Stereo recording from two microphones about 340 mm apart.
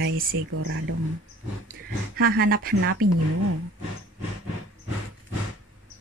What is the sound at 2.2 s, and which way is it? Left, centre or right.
Speech, right.